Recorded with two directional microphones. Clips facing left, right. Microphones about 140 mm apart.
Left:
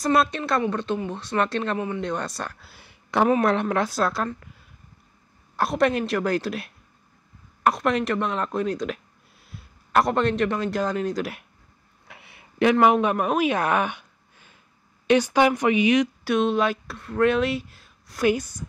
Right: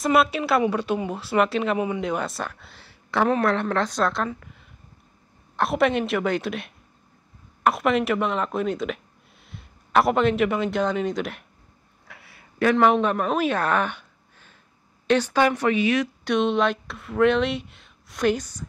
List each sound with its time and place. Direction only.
0.0 s speech: 5° right (ahead or behind)
2.7 s a sound: 15° left (ahead or behind)
3.3 s a woman's voice: 15° left (ahead or behind)
5.6 s speech: centre (ahead or behind)
12.1 s a sound: 20° left (ahead or behind)
12.7 s a woman's voice: 10° left (ahead or behind)
16.3 s speech: centre (ahead or behind)